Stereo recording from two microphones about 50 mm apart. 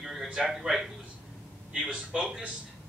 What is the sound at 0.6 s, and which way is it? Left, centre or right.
Speech, centre.